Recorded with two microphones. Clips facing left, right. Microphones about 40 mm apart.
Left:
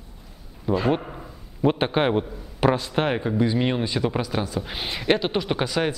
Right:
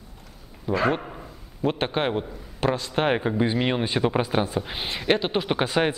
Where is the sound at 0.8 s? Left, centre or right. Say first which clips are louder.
Left 1 dB; centre.